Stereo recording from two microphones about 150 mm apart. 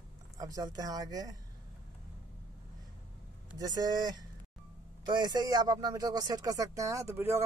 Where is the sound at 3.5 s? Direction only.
25° right (ahead or behind).